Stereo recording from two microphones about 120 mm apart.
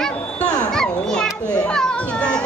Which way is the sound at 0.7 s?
5° left (ahead or behind).